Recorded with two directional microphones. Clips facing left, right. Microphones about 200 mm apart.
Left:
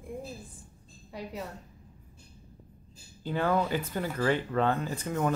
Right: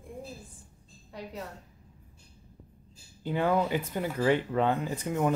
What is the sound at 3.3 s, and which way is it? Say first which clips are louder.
Speech: right 1 dB; 15° right (ahead or behind).